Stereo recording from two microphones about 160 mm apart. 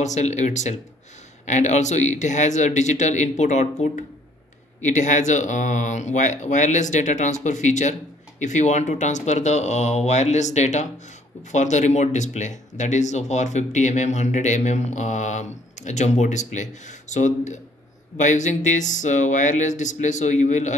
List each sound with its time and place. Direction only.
0.0 s speech: 45° left (ahead or behind)